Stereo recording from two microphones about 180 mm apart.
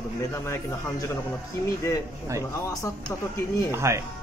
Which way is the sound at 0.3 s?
15° left (ahead or behind).